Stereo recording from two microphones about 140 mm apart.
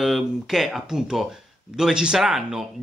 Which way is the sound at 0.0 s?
Centre (ahead or behind).